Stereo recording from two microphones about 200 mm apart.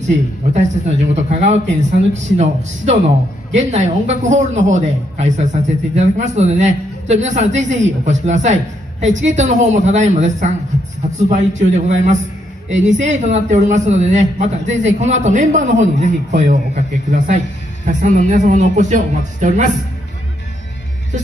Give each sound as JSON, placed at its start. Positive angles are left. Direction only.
{"t": 0.0, "sound": "a man's voice", "side_deg": -35}